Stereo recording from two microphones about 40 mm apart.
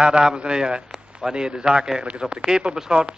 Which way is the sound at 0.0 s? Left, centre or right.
Centre.